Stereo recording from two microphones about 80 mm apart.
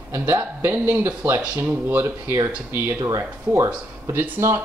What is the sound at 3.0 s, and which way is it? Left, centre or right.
Speech, right.